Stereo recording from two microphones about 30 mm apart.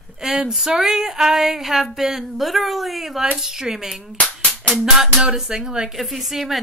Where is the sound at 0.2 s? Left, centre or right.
Centre.